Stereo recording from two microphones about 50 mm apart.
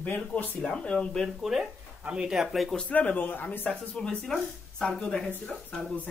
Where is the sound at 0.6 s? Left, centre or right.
Centre.